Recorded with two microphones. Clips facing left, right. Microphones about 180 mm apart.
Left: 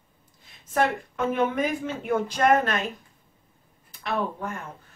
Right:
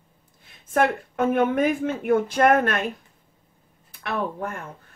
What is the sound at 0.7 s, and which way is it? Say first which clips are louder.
A woman's voice: right 3 dB; 55° right (ahead or behind).